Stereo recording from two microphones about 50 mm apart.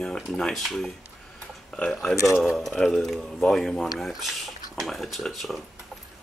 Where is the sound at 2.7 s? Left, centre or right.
Centre.